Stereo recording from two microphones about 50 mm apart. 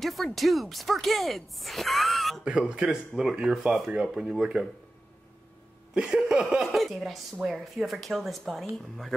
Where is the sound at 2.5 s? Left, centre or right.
Right.